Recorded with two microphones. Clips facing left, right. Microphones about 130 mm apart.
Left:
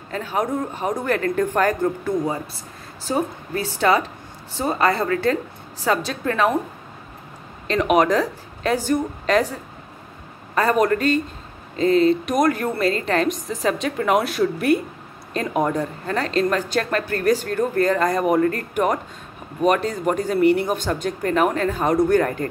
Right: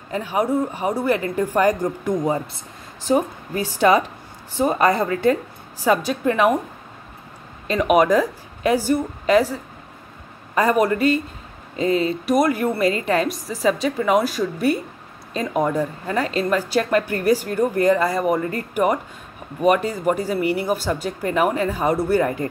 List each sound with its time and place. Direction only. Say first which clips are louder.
0.1 s speech: right 3 dB; 10° right (ahead or behind)
7.6 s speech: right 1 dB; 5° right (ahead or behind)
18.4 s speech: left 1 dB; 10° right (ahead or behind)